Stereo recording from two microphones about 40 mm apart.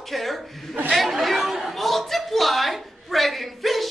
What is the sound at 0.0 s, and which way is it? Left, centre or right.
Speech, centre.